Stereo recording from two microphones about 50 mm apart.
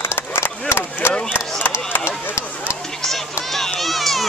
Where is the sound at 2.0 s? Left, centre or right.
Left.